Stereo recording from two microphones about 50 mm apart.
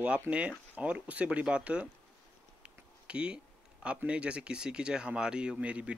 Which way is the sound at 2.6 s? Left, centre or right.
Right.